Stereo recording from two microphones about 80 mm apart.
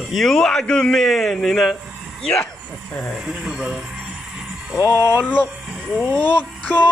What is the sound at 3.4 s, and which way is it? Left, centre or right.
Speech, centre.